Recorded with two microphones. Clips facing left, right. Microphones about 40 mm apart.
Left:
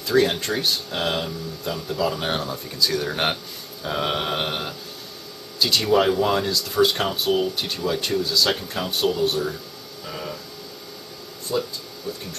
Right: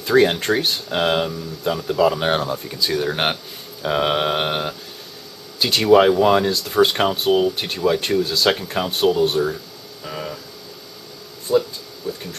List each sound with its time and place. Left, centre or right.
0.0 s speech: right
5.6 s speech: right
7.1 s speech: centre
8.7 s speech: centre
9.2 s speech: right
10.0 s a sound: centre
11.5 s speech: centre